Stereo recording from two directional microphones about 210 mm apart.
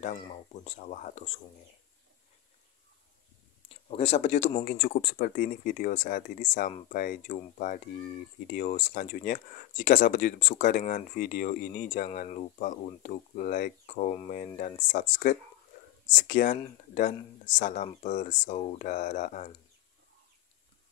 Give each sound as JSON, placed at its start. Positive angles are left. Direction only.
{"t": 0.2, "sound": "speech", "side_deg": 35}
{"t": 3.6, "sound": "speech", "side_deg": 30}
{"t": 4.6, "sound": "speech", "side_deg": 45}